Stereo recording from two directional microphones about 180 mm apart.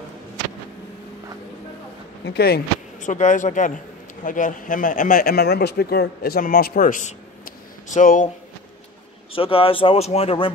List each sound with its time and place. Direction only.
2.2 s speech: 60° left (ahead or behind)
3.0 s a man's voice: 45° left (ahead or behind)
9.3 s speech: 30° left (ahead or behind)